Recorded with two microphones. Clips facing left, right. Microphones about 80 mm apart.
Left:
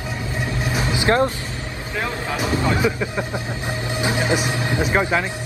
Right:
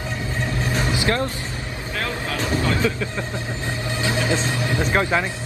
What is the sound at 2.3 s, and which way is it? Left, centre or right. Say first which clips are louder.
Speech: left 2 dB; centre.